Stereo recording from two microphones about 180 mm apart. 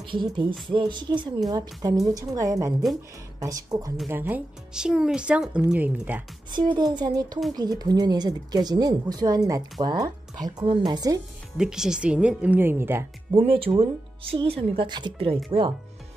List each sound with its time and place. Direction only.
0.0 s a woman's voice: 25° right (ahead or behind); by 6.2 s 10° right (ahead or behind)
6.5 s a woman's voice: 25° right (ahead or behind)
11.5 s speech: 5° right (ahead or behind)
13.4 s a woman's voice: 30° right (ahead or behind)